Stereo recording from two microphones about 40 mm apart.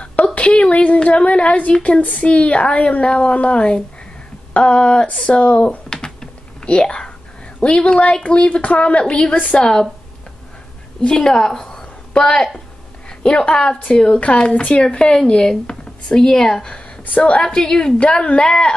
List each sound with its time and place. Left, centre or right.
0.0 s a sound: left
0.5 s a woman's voice: left
11.0 s a woman's voice: centre
12.1 s a woman's voice: left
14.5 s a woman's voice: left
14.8 s a woman's voice: left